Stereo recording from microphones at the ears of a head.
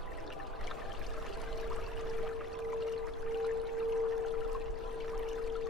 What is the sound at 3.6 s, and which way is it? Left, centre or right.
Music, left.